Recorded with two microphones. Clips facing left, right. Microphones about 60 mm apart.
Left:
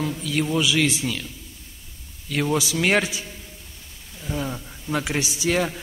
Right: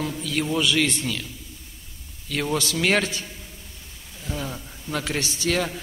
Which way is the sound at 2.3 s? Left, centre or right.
Centre.